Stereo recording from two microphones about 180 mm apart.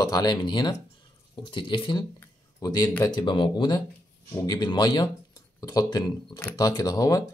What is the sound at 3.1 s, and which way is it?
Speech, 25° left (ahead or behind).